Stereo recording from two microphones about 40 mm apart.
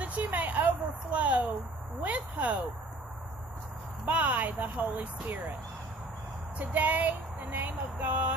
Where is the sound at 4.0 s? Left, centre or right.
Right.